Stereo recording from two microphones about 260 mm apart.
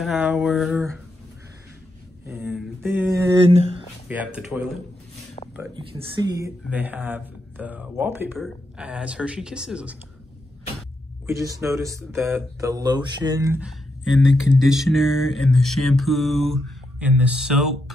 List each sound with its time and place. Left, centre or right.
0.0 s speech: centre
2.2 s a sound: centre
3.5 s a sound: right
4.1 s speech: centre
5.9 s speech: centre
11.2 s speech: centre